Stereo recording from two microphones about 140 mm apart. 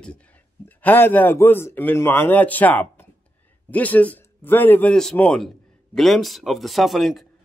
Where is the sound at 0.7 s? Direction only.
15° left (ahead or behind).